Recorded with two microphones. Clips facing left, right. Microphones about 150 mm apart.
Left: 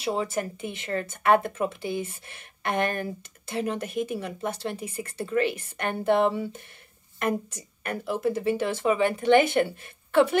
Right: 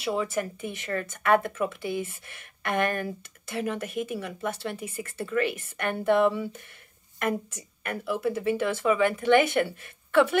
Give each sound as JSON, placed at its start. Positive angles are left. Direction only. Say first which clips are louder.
{"t": 0.0, "sound": "speech", "louder": "even", "side_deg": 35}
{"t": 0.6, "sound": "speech", "louder": "left 1 dB", "side_deg": 25}